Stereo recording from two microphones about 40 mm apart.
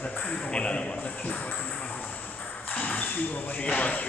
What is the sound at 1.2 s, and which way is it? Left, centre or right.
Music, left.